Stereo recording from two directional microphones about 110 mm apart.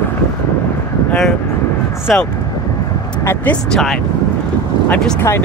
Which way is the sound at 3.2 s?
25° left (ahead or behind).